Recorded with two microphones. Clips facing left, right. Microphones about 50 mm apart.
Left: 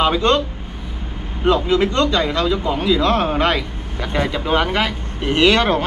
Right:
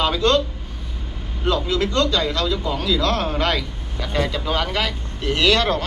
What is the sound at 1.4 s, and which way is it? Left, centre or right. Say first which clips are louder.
A man's voice: left 5 dB; left.